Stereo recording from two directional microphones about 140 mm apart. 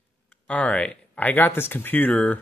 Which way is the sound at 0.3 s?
10° left (ahead or behind).